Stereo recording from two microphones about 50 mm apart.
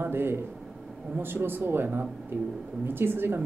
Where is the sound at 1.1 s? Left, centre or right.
Right.